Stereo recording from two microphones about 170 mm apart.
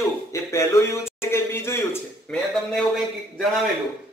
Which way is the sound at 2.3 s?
Centre (ahead or behind).